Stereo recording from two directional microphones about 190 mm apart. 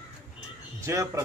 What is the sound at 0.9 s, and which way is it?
Speech, 15° right (ahead or behind).